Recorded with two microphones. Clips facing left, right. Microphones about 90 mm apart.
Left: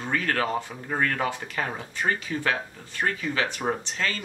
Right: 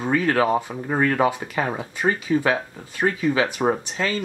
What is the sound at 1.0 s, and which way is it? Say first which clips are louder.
Speech: right 7 dB; 15° right (ahead or behind).